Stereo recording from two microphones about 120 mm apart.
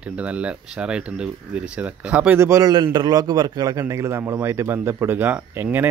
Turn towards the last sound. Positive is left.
turn(degrees=-15)  # may be behind; listen again after turning